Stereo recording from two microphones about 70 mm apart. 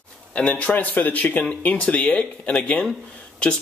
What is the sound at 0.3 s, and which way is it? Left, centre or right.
A man's voice, centre.